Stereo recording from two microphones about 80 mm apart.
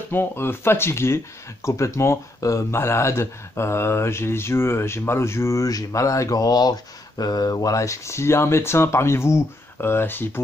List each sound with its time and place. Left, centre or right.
0.1 s speech: left